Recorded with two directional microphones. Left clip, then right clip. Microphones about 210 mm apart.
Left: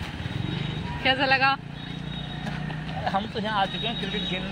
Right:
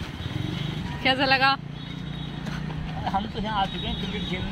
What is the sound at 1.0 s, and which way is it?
Speech, 20° right (ahead or behind).